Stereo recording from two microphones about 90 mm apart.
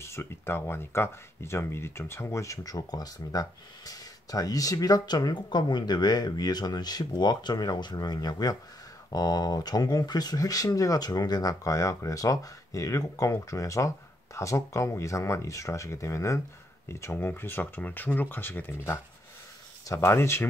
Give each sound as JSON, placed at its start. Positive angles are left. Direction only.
{"t": 0.0, "sound": "speech", "side_deg": 30}